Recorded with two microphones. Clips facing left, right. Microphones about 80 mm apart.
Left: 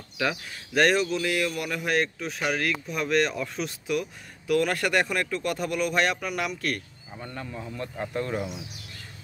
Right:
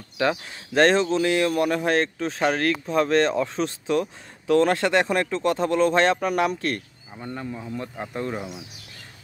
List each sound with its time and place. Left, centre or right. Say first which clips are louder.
0.2 s speech: right 5 dB; right
7.2 s speech: right 4 dB; centre